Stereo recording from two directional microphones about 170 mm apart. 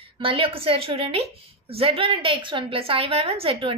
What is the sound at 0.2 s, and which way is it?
A woman's voice, 30° right (ahead or behind).